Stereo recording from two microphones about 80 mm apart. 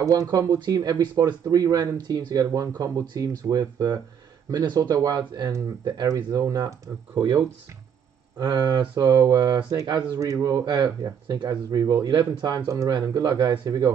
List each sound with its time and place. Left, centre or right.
0.0 s speech: right
6.0 s speech: right
7.2 s speech: right
10.6 s speech: right
12.1 s speech: right